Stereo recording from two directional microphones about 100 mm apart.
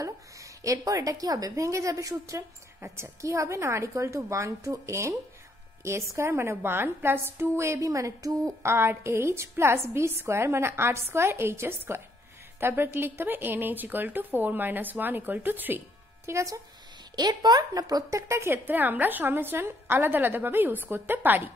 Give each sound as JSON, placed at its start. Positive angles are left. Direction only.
{"t": 0.0, "sound": "a woman's voice", "side_deg": -35}
{"t": 16.3, "sound": "a woman's voice", "side_deg": -30}
{"t": 17.1, "sound": "a woman's voice", "side_deg": -45}
{"t": 18.3, "sound": "a woman's voice", "side_deg": -25}